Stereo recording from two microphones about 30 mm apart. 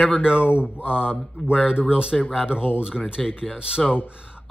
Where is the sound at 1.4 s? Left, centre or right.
Left.